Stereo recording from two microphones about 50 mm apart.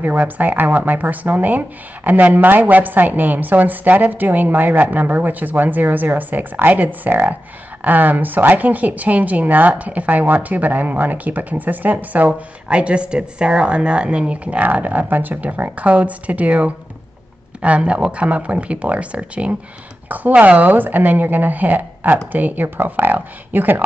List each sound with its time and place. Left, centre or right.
0.0 s speech: right
12.3 s speech: right